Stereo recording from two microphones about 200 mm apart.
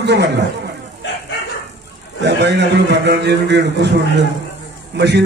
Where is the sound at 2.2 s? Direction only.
60° right (ahead or behind).